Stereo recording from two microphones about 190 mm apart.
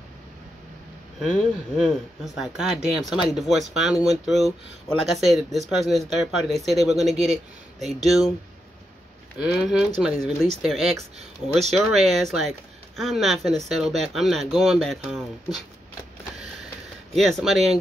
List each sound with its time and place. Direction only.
1.2 s speech: 5° right (ahead or behind)
9.4 s speech: 5° right (ahead or behind)
11.1 s speech: 35° right (ahead or behind)
11.7 s speech: centre (ahead or behind)
17.1 s speech: centre (ahead or behind)